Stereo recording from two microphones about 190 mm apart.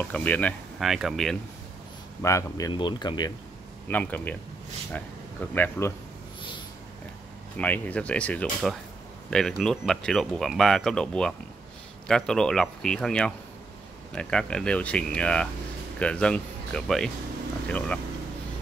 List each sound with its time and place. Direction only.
0.1 s speech: 10° left (ahead or behind)
2.2 s speech: 15° left (ahead or behind)
3.8 s speech: 10° left (ahead or behind)
7.5 s speech: 10° left (ahead or behind)